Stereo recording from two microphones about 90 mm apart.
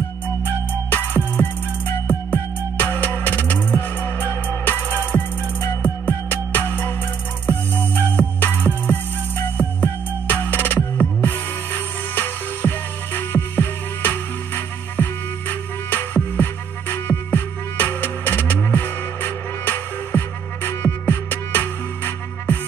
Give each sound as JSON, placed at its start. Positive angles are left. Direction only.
{"t": 0.5, "sound": "music", "side_deg": 25}